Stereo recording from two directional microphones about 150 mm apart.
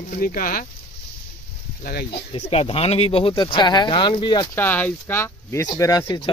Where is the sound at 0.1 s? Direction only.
70° left (ahead or behind).